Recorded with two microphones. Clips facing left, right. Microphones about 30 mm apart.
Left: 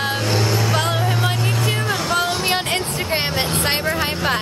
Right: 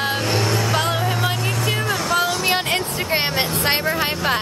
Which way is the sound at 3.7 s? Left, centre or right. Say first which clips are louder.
Right 1 dB; centre.